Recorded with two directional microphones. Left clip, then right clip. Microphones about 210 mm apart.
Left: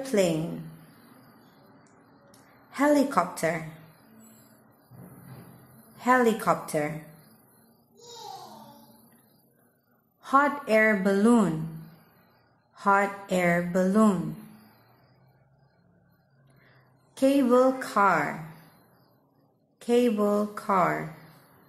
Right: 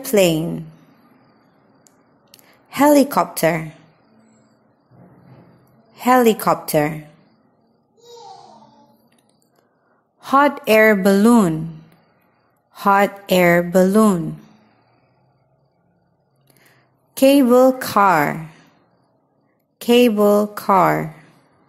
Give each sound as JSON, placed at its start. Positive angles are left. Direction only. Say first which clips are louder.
{"t": 0.0, "sound": "a woman's voice", "louder": "right 10 dB", "side_deg": -35}
{"t": 2.7, "sound": "a woman's voice", "louder": "right 9 dB", "side_deg": -35}
{"t": 5.9, "sound": "a woman's voice", "louder": "right 8 dB", "side_deg": -30}
{"t": 10.2, "sound": "a woman's voice", "louder": "right 8 dB", "side_deg": -35}
{"t": 12.7, "sound": "a woman's voice", "louder": "right 8 dB", "side_deg": -35}
{"t": 17.1, "sound": "a woman's voice", "louder": "right 10 dB", "side_deg": -35}
{"t": 19.8, "sound": "a woman's voice", "louder": "right 10 dB", "side_deg": -35}